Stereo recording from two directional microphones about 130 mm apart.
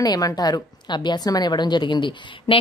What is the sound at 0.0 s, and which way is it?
A woman's voice, 30° left (ahead or behind).